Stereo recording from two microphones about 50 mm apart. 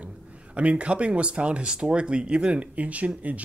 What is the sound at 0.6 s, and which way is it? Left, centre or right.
Speech, right.